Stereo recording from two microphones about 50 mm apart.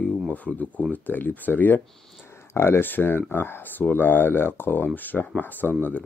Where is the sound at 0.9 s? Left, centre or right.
Left.